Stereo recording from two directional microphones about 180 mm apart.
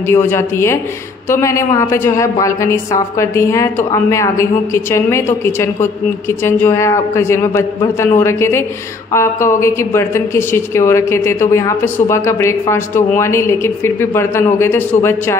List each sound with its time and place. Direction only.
0.1 s a woman's voice: 15° left (ahead or behind)